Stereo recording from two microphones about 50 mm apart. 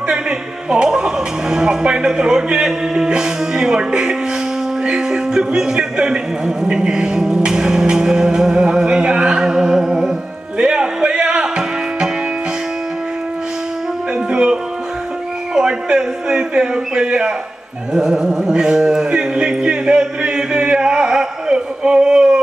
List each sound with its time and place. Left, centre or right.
0.1 s a man's voice: centre
10.6 s music: centre
14.1 s music: centre
15.5 s a man's voice: centre
17.9 s a sound: centre